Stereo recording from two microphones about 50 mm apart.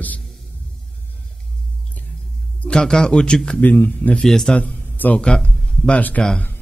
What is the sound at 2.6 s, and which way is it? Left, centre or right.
A man's voice, centre.